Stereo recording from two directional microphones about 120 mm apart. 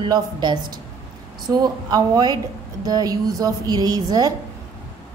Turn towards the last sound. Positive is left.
turn(degrees=-30)  # may be behind; listen again after turning